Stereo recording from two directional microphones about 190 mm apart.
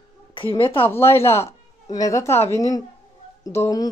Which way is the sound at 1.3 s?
30° left (ahead or behind).